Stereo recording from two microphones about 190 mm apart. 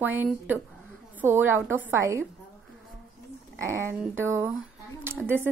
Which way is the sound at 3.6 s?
15° right (ahead or behind).